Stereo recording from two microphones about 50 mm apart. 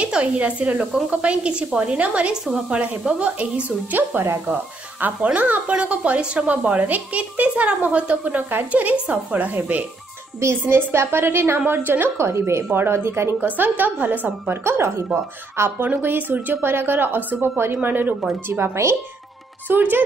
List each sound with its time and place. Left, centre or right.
0.0 s a child's voice: right
10.7 s a woman's voice: right
12.2 s a woman's voice: right
12.7 s a woman's voice: right
13.4 s speech: right
14.5 s a woman's voice: right
15.8 s a woman's voice: right
17.8 s speech: right
18.5 s a woman's voice: right
19.7 s speech: right